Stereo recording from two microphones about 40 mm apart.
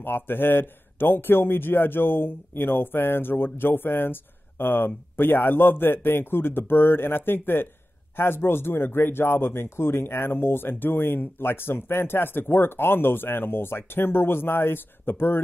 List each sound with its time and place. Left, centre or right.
0.0 s a man's voice: left